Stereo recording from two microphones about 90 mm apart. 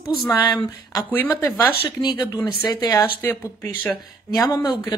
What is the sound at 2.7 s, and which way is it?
Speech, 50° left (ahead or behind).